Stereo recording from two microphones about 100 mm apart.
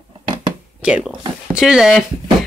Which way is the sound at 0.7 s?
10° right (ahead or behind).